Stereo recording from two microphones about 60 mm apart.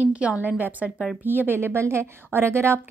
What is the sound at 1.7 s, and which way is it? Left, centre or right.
A woman's voice, right.